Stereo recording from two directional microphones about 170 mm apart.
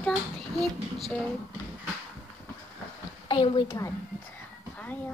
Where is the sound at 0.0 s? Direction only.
5° left (ahead or behind).